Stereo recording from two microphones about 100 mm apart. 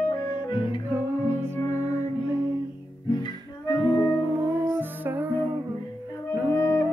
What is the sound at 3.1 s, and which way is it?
Music, 50° left (ahead or behind).